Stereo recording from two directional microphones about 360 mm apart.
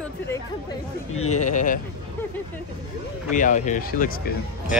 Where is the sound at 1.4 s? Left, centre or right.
Left.